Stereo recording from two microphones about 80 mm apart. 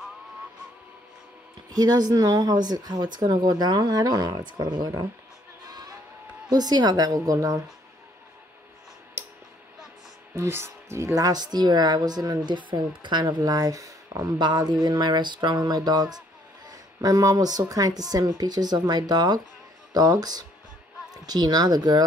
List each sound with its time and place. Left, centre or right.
1.7 s speech: right
5.7 s crowd: right
6.5 s speech: right
10.3 s speech: right
14.4 s speech: right